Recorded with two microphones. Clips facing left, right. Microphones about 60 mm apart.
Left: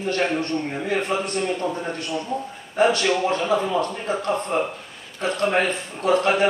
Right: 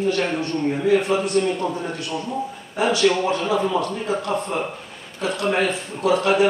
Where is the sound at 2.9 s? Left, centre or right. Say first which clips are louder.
Right 6 dB; centre.